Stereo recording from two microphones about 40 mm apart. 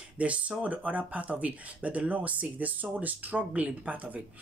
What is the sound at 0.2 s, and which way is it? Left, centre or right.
Speech, right.